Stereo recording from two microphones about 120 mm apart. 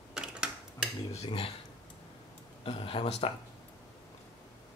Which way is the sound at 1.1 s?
55° left (ahead or behind).